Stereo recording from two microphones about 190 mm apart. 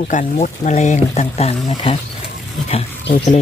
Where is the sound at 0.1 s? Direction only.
40° left (ahead or behind).